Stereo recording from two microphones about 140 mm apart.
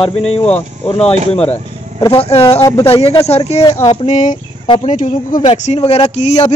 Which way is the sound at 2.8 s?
45° left (ahead or behind).